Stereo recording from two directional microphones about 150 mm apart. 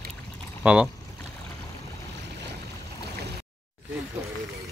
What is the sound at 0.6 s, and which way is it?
Speech, 5° right (ahead or behind).